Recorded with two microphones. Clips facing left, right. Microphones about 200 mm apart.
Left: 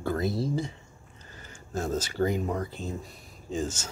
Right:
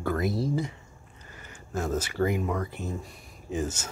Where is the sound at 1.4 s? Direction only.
30° left (ahead or behind).